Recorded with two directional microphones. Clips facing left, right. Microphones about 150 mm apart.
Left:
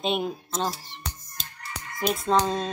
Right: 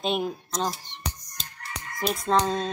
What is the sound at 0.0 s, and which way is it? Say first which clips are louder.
Speech: even; centre (ahead or behind).